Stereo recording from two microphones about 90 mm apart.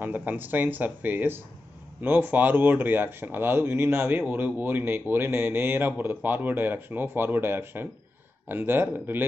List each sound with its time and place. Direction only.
0.0 s speech: 20° right (ahead or behind)